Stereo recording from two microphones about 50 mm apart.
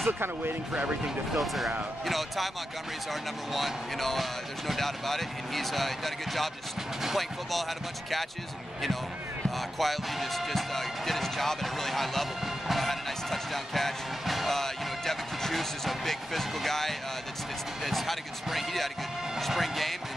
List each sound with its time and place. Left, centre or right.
0.0 s speech: right
1.4 s speech: centre
9.6 s speech: centre